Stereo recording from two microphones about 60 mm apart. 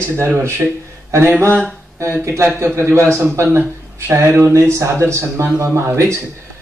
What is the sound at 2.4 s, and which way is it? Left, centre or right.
A man's voice, right.